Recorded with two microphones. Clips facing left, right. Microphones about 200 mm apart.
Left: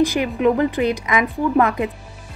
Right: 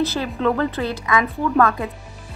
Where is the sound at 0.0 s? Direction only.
15° left (ahead or behind).